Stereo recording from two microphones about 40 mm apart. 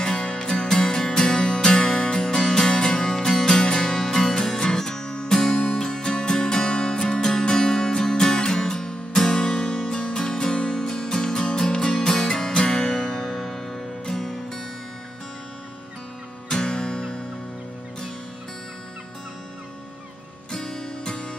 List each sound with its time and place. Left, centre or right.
0.0 s music: centre
13.3 s music: centre
16.4 s music: centre
20.5 s music: centre